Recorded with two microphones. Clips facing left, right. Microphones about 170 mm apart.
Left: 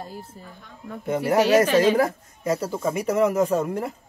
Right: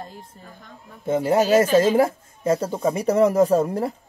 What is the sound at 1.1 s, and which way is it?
Speech, 25° right (ahead or behind).